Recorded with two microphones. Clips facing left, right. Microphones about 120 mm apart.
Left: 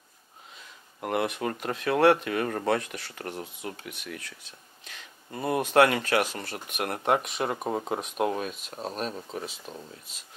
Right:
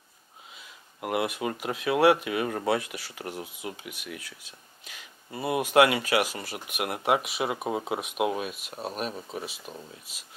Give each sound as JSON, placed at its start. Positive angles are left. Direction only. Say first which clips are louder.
{"t": 0.6, "sound": "speech", "louder": "even", "side_deg": -5}